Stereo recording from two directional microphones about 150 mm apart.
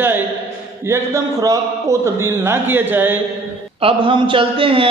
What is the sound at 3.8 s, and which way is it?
A man's voice, 35° right (ahead or behind).